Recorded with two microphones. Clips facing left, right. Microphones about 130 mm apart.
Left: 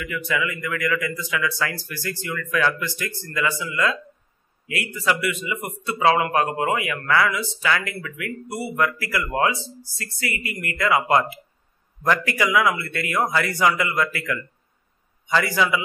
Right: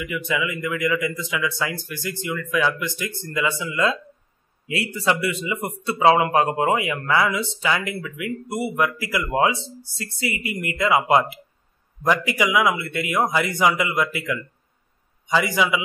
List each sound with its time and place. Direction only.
0.0 s a man's voice: 20° right (ahead or behind)